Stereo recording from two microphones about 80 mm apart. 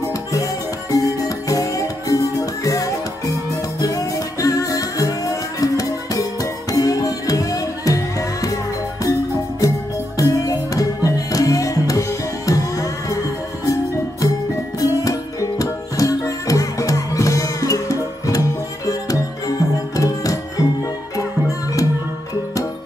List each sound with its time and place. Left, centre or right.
0.9 s music: left
9.6 s music: left
14.8 s music: left